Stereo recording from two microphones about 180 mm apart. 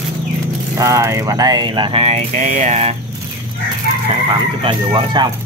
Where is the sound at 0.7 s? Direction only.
15° right (ahead or behind); by 3.0 s 35° right (ahead or behind).